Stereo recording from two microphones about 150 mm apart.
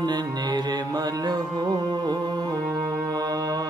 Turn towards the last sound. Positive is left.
turn(degrees=-25)  # may be behind; listen again after turning